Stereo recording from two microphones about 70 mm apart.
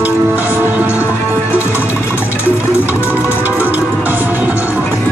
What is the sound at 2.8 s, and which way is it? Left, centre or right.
Music, right.